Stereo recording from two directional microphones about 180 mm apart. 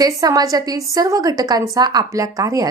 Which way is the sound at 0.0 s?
20° right (ahead or behind).